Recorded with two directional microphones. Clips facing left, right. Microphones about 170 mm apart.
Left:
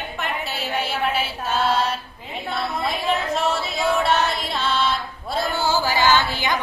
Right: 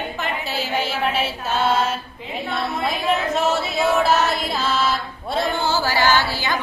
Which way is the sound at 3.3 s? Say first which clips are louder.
Right 3 dB; centre (ahead or behind).